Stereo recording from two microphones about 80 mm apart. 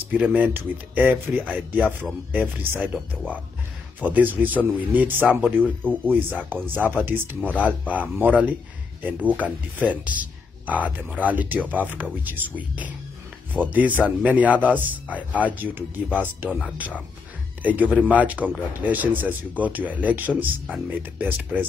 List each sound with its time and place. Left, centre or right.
0.1 s speech: right